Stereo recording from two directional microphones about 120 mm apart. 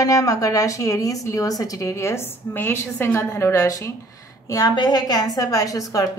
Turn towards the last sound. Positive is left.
turn(degrees=30)  # may be behind; listen again after turning